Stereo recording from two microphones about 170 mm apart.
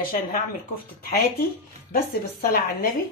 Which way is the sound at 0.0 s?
55° left (ahead or behind).